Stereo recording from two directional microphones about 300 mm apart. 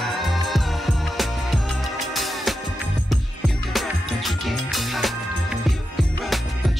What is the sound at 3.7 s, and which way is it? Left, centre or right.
Music, centre.